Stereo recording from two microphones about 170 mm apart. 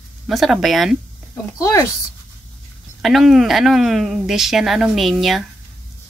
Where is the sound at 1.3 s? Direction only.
20° left (ahead or behind).